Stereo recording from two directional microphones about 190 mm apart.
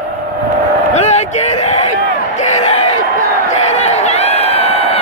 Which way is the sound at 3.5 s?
35° left (ahead or behind).